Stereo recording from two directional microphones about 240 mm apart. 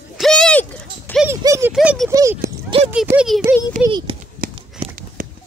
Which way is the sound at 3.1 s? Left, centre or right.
Centre.